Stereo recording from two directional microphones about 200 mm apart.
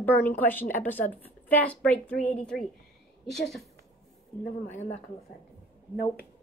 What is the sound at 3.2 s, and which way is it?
Speech, centre (ahead or behind).